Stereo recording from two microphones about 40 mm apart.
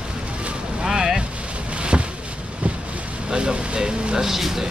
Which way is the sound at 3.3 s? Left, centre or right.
Right.